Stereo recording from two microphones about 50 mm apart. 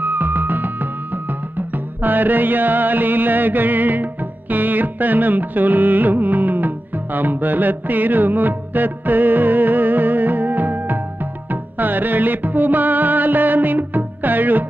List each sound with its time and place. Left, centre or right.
0.0 s music: right
2.0 s music: right